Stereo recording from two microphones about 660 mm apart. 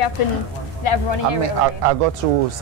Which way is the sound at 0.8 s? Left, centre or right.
Left.